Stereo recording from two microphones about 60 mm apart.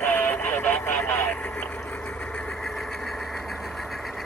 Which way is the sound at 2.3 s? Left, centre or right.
Centre.